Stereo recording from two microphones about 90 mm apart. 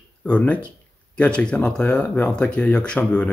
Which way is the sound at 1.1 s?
10° left (ahead or behind).